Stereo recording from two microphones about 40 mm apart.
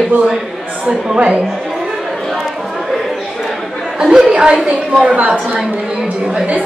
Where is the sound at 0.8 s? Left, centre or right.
Centre.